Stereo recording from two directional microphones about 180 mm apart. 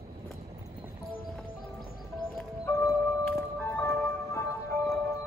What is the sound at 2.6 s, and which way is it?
Music, 15° left (ahead or behind).